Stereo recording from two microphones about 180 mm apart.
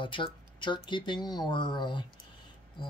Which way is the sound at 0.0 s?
30° left (ahead or behind).